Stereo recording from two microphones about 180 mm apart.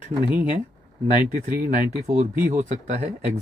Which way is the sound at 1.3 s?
45° right (ahead or behind).